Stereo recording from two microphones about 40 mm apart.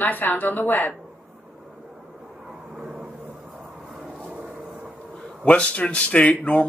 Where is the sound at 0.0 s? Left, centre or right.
Left.